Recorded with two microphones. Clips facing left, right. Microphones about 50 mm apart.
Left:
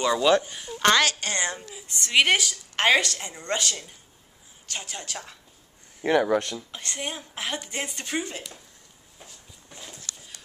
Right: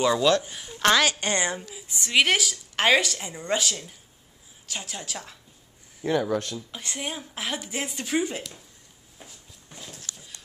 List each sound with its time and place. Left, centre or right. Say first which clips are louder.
0.0 s speech: even; centre
1.2 s a woman's voice: right 2 dB; centre
1.6 s speech: even; centre
6.0 s speech: left 3 dB; left
6.7 s speech: even; centre
9.2 s walk: right 1 dB; centre